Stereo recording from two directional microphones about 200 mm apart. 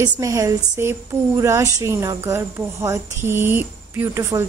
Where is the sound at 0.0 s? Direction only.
15° right (ahead or behind).